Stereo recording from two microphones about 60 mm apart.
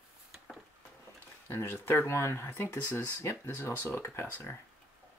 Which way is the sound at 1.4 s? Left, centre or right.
Left.